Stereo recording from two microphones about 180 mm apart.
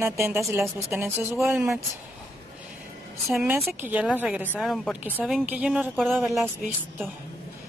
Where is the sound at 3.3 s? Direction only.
5° right (ahead or behind).